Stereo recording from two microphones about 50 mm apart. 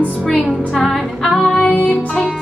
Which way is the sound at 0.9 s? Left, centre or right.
Centre.